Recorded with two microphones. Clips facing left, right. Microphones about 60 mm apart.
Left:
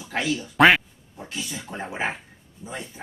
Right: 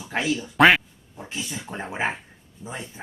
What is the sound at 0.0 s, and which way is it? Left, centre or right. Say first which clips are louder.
Speech: right 1 dB; right.